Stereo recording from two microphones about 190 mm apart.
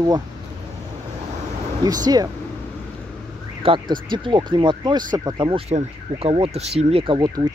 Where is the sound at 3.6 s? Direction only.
25° right (ahead or behind).